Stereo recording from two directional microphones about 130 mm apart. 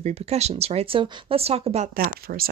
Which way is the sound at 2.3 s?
90° right.